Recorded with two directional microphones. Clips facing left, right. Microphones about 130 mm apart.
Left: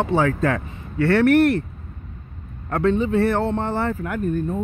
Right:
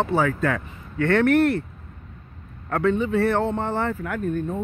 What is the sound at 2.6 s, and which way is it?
Speech, 15° left (ahead or behind).